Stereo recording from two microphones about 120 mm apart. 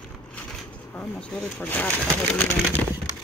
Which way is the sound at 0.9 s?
15° left (ahead or behind).